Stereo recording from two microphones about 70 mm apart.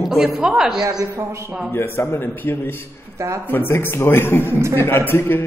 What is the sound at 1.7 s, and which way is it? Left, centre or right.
A man's voice, left.